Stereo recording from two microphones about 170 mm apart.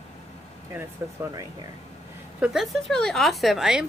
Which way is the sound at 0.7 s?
15° right (ahead or behind).